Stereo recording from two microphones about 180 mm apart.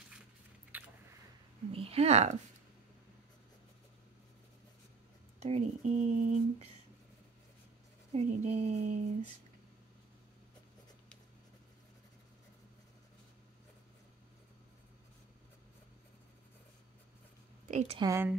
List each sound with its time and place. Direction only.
0.7 s biting: 10° right (ahead or behind)
1.7 s speech: 35° right (ahead or behind)
5.4 s speech: 40° right (ahead or behind)
8.1 s speech: 35° right (ahead or behind)
17.6 s a sound: 40° right (ahead or behind)
17.9 s a woman's voice: 20° right (ahead or behind)